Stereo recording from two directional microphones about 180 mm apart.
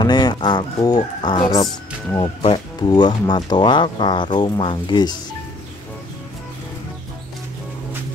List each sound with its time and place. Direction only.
0.0 s speech: 25° left (ahead or behind)